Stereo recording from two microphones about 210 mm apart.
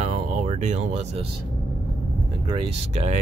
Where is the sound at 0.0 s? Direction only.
30° right (ahead or behind).